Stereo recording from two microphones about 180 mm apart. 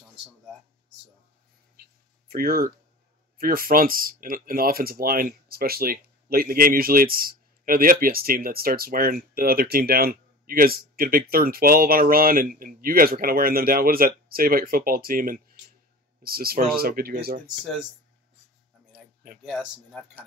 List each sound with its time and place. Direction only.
2.2 s speech: 55° right (ahead or behind)
19.4 s speech: centre (ahead or behind)